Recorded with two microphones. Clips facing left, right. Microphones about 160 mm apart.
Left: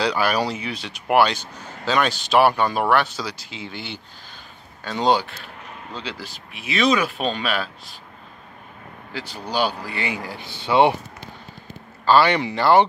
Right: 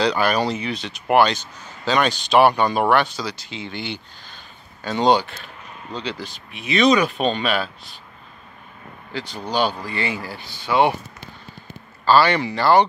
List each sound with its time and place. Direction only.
0.0 s speech: 5° left (ahead or behind)
9.1 s speech: 10° left (ahead or behind); by 11.0 s 25° left (ahead or behind)
12.0 s speech: 20° left (ahead or behind)